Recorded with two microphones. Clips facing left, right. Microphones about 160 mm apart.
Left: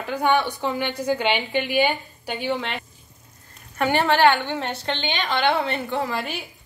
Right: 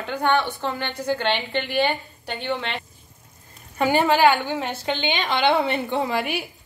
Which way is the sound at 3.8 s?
10° right (ahead or behind).